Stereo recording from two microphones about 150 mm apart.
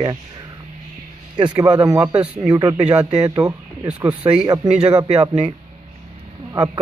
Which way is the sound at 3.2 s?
25° right (ahead or behind).